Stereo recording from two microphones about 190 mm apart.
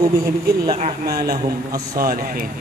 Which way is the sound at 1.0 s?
55° right (ahead or behind).